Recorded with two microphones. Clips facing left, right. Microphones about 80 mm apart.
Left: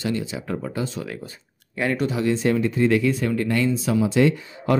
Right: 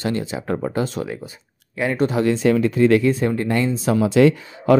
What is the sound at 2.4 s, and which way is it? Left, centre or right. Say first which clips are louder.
Speech: right 5 dB; right.